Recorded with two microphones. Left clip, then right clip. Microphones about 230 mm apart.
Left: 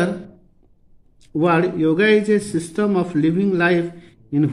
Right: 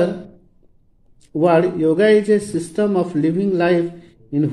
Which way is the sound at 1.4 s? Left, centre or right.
Centre.